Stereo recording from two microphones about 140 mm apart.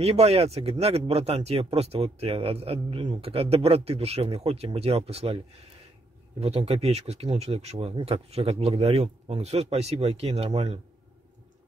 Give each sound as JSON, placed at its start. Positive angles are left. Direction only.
{"t": 0.0, "sound": "speech", "side_deg": -45}
{"t": 6.4, "sound": "speech", "side_deg": -45}